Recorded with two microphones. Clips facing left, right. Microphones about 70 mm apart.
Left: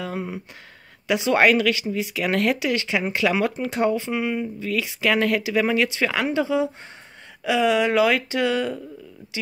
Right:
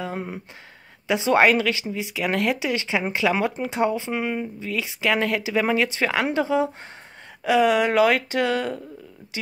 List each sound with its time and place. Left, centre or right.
0.0 s a sound: right
1.0 s speech: right
4.1 s speech: right